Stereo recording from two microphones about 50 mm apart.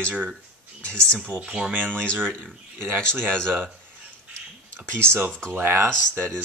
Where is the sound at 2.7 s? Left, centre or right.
Right.